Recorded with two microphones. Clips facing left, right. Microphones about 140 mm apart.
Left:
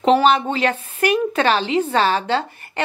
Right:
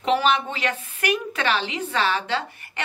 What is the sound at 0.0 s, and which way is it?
A woman's voice, 35° left (ahead or behind).